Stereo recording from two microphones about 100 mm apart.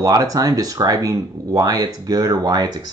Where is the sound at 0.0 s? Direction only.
35° right (ahead or behind).